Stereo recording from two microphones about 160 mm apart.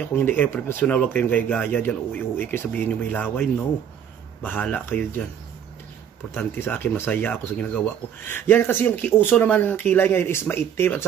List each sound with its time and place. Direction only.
0.0 s speech: 15° left (ahead or behind)
6.3 s speech: 15° left (ahead or behind)